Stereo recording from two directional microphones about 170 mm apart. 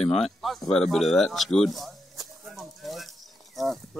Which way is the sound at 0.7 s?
Centre (ahead or behind).